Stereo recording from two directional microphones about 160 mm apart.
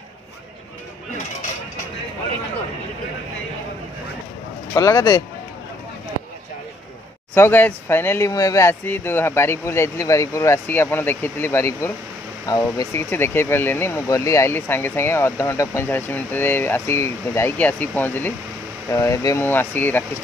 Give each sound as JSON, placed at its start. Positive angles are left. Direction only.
{"t": 4.7, "sound": "speech", "side_deg": 20}
{"t": 7.3, "sound": "speech", "side_deg": 15}